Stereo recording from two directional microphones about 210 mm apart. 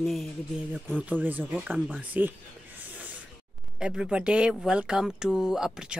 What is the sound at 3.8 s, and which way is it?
A man's voice, 5° right (ahead or behind).